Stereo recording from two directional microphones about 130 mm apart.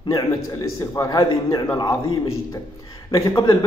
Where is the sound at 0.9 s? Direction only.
25° left (ahead or behind).